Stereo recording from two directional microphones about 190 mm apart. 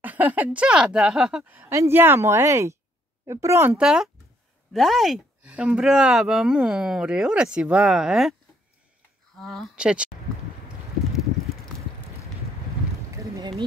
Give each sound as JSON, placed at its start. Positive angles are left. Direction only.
{"t": 0.0, "sound": "speech", "side_deg": -10}
{"t": 9.4, "sound": "speech", "side_deg": 0}
{"t": 13.1, "sound": "a sound", "side_deg": -15}